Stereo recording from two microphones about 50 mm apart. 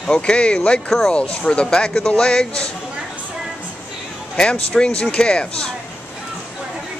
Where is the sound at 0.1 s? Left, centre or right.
Left.